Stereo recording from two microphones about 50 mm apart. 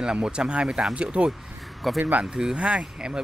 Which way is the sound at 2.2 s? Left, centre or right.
Centre.